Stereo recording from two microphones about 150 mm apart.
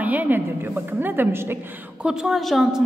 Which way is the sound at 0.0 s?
10° right (ahead or behind).